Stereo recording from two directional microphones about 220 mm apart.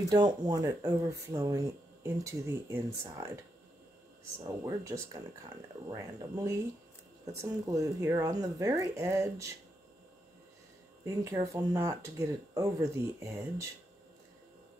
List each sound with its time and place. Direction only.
0.1 s speech: 20° right (ahead or behind)
4.4 s speech: 15° right (ahead or behind)
7.6 s speech: 15° right (ahead or behind)
11.1 s speech: 15° right (ahead or behind)